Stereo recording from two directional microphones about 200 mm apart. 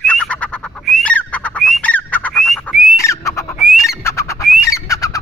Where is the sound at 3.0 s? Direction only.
15° left (ahead or behind).